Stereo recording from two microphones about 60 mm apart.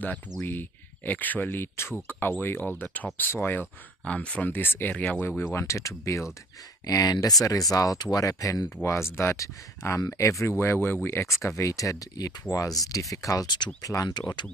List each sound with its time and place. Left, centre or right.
0.4 s speech: left
1.6 s speech: left
3.2 s speech: left
4.0 s speech: centre
4.5 s speech: left
4.9 s speech: centre
5.5 s speech: left
6.9 s speech: left
8.8 s speech: left
9.4 s speech: left
11.1 s speech: left